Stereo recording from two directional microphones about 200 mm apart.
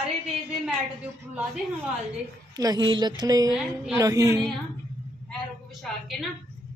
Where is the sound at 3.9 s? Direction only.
15° right (ahead or behind).